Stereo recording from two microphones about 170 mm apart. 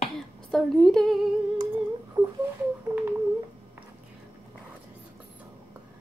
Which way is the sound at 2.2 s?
25° right (ahead or behind).